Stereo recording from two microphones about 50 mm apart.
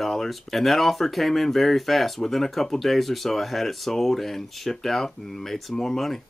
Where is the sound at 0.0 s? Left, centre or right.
Centre.